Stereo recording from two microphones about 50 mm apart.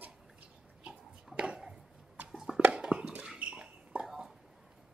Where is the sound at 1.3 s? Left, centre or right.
Right.